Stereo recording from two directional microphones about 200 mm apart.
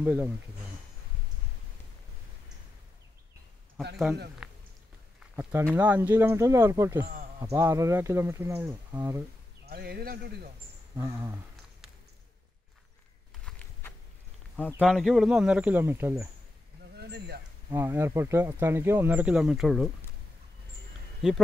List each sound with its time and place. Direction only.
0.0 s speech: 10° right (ahead or behind)
4.4 s a sound: 5° right (ahead or behind)
5.3 s speech: 10° right (ahead or behind)
9.7 s a man's voice: 50° right (ahead or behind)
13.5 s a sound: 5° left (ahead or behind)
14.6 s speech: 5° left (ahead or behind); by 16.3 s 10° right (ahead or behind)
16.9 s speech: 55° right (ahead or behind)
17.6 s speech: 10° right (ahead or behind)
21.2 s speech: 5° right (ahead or behind)